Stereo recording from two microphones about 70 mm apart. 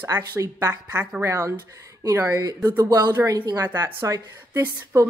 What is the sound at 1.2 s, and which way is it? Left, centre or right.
Speech, right.